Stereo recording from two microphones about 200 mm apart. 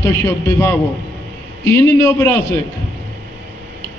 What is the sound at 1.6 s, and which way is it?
Speech, 10° left (ahead or behind).